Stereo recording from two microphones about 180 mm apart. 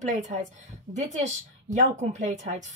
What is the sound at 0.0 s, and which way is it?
Speech, 45° right (ahead or behind).